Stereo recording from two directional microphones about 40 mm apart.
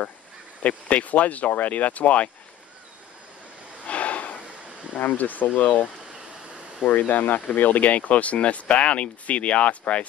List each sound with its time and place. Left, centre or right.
0.6 s speech: left
3.8 s a sound: left
4.9 s speech: left